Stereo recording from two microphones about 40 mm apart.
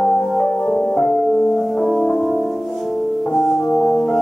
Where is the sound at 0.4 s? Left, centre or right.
Centre.